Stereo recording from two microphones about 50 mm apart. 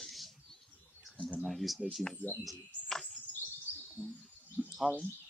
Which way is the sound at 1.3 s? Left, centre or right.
Centre.